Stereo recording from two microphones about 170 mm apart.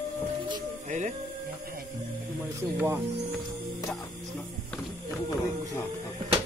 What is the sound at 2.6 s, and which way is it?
Speech, 15° right (ahead or behind).